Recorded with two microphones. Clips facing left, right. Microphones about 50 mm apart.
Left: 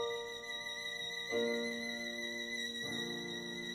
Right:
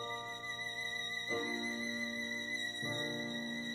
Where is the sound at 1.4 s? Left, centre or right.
Right.